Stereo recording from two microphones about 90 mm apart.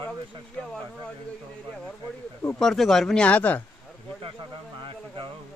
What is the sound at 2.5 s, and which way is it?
Speech, centre (ahead or behind).